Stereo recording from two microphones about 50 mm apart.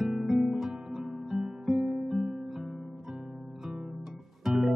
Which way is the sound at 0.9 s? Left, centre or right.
Centre.